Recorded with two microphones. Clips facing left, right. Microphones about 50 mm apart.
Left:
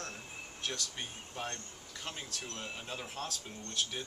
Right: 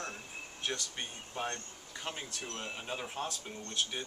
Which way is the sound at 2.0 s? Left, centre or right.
Centre.